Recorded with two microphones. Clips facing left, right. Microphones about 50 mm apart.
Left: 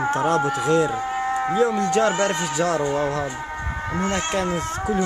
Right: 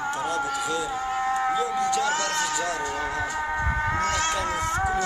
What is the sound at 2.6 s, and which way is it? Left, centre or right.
Speech, left.